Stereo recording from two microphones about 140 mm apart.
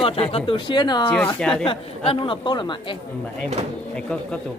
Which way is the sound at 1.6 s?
40° left (ahead or behind).